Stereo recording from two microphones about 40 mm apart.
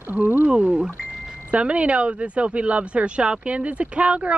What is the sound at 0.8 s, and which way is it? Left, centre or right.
Speech, right.